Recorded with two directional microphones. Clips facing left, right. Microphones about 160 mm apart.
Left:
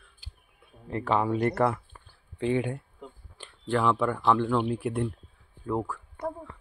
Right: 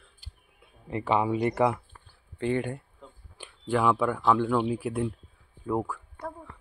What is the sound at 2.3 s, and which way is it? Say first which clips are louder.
Speech: left 1 dB; centre (ahead or behind).